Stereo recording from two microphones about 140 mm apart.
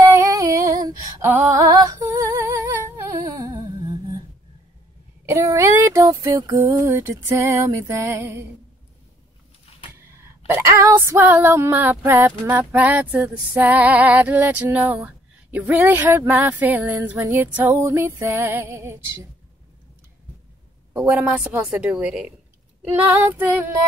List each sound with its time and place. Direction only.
0.0 s female singing: 25° right (ahead or behind)
1.2 s a sound: 20° right (ahead or behind)
5.3 s a sound: 20° right (ahead or behind)
6.5 s music: 35° right (ahead or behind)
6.9 s music: 20° right (ahead or behind)
10.4 s female singing: 20° right (ahead or behind)
21.0 s female singing: 10° right (ahead or behind)